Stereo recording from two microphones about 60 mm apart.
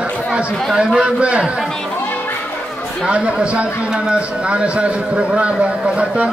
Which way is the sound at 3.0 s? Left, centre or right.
Centre.